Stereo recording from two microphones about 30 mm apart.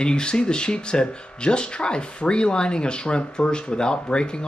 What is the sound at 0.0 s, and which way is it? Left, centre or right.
Speech, left.